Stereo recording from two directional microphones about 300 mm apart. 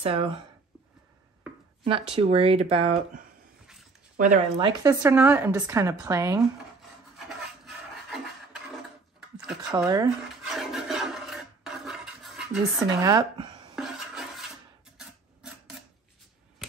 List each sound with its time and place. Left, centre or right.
0.0 s speech: centre
1.9 s a woman's voice: centre
7.2 s rub: centre
9.7 s speech: centre
10.5 s a sound: centre